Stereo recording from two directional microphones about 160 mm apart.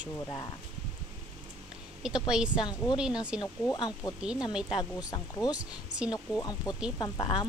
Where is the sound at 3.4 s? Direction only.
25° left (ahead or behind).